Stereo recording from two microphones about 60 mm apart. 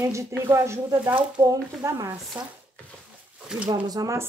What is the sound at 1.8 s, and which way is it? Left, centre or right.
Speech, right.